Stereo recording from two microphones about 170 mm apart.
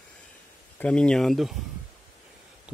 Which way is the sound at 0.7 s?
5° left (ahead or behind).